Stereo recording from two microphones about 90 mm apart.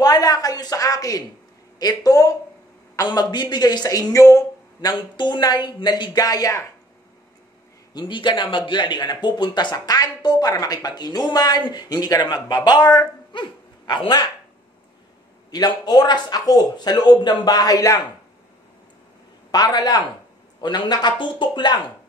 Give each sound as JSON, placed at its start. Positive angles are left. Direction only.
{"t": 0.0, "sound": "a sound", "side_deg": 45}
{"t": 1.8, "sound": "speech", "side_deg": 45}
{"t": 4.9, "sound": "speech", "side_deg": 60}
{"t": 7.9, "sound": "speech", "side_deg": 60}
{"t": 15.5, "sound": "speech", "side_deg": 50}
{"t": 19.5, "sound": "speech", "side_deg": 50}